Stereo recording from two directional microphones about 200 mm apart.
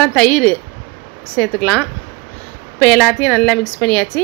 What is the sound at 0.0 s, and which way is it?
A woman's voice, 5° left (ahead or behind).